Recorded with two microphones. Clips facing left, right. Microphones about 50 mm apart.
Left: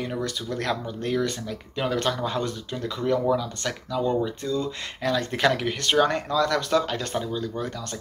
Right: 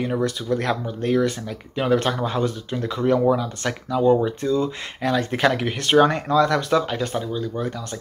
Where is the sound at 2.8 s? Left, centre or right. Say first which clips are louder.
Right 5 dB; right; by 7.7 s centre.